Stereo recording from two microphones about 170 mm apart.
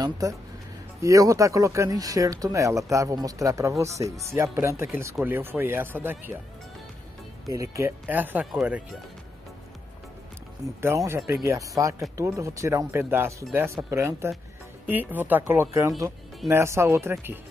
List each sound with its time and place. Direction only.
0.2 s speech: 20° right (ahead or behind)
7.4 s speech: 20° right (ahead or behind)
10.8 s speech: 15° right (ahead or behind)